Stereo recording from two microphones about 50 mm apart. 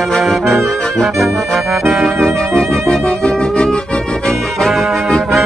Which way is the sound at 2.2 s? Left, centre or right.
Centre.